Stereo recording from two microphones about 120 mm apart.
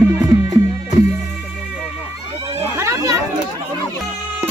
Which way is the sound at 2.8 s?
25° right (ahead or behind).